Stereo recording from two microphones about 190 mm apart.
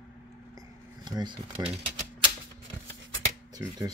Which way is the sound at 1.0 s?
20° right (ahead or behind).